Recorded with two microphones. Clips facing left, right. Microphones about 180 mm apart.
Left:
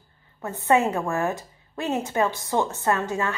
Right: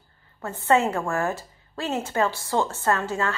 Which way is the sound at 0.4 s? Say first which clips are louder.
Even; 15° left (ahead or behind).